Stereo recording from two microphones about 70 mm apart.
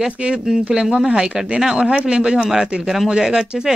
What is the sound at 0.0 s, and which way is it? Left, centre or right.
Speech, centre.